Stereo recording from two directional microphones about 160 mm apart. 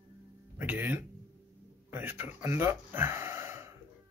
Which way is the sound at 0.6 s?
10° right (ahead or behind).